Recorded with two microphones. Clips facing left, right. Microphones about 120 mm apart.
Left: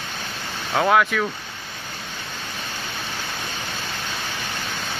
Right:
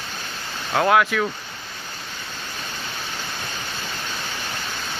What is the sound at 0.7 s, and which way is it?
Speech, centre (ahead or behind).